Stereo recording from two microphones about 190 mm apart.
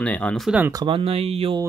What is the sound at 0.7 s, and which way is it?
Speech, 25° right (ahead or behind).